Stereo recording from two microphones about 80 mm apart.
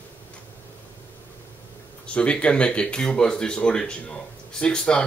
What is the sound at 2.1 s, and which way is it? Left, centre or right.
Speech, centre.